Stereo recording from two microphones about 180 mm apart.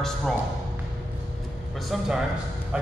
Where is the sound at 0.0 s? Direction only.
Centre (ahead or behind).